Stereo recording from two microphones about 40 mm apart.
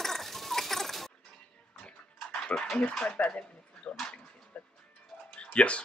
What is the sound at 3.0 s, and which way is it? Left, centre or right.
Speech, left.